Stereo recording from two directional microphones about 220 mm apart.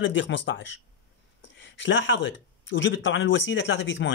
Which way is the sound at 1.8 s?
55° left (ahead or behind).